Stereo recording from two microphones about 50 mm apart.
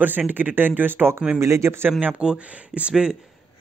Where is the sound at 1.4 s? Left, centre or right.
Right.